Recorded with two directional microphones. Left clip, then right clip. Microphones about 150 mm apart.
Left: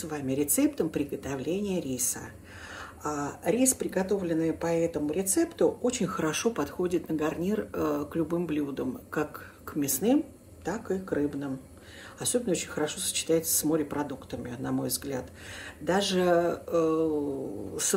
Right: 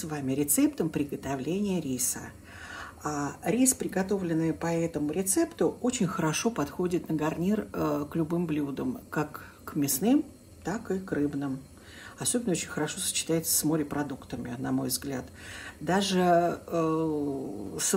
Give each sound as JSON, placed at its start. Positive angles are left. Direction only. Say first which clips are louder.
{"t": 0.0, "sound": "speech", "louder": "left 1 dB", "side_deg": -75}